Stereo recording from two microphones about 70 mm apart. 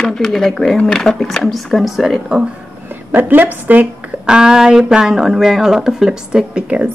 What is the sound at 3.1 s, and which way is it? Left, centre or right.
Speech, right.